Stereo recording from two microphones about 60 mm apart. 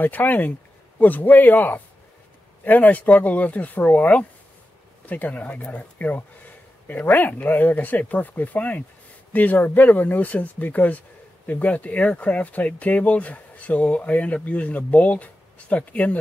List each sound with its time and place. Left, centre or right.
0.0 s speech: left